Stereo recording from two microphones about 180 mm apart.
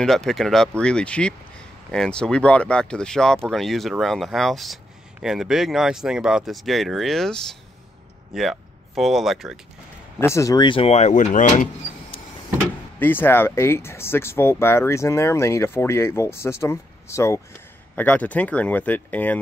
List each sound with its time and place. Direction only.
0.0 s speech: centre (ahead or behind)
10.2 s speech: 15° left (ahead or behind); by 12.2 s 45° left (ahead or behind)
13.0 s speech: 10° left (ahead or behind)